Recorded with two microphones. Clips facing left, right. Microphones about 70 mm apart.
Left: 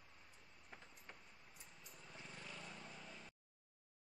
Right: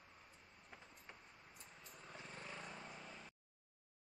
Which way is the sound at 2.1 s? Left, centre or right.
Right.